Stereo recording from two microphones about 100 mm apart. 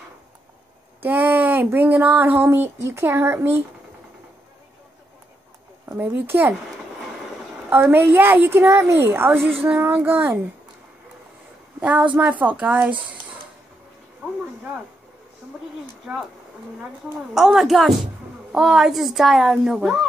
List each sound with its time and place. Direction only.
1.0 s a woman's voice: 20° right (ahead or behind)
5.9 s a woman's voice: 20° right (ahead or behind)
7.7 s a woman's voice: 20° right (ahead or behind)
11.8 s a woman's voice: 15° right (ahead or behind)
14.2 s a sound: 15° right (ahead or behind)
17.3 s speech: 5° right (ahead or behind)